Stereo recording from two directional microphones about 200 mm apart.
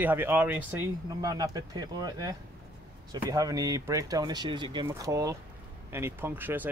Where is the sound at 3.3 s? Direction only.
15° right (ahead or behind).